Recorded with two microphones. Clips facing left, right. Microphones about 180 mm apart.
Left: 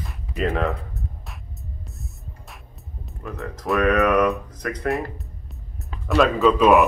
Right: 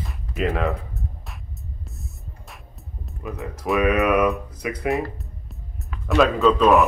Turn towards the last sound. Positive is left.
turn(degrees=10)  # may be behind; listen again after turning